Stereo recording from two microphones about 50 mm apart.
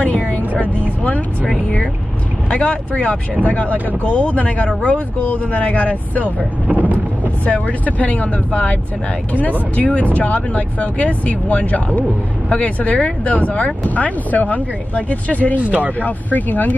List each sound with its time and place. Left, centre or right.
0.6 s speech: left
2.5 s speech: left
6.7 s vehicle: right
7.4 s speech: left
15.6 s speech: right
16.0 s speech: left